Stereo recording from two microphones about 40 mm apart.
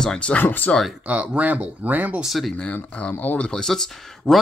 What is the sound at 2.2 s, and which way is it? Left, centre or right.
Speech, centre.